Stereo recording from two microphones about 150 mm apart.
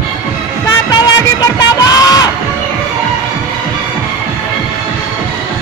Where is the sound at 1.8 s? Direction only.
25° left (ahead or behind).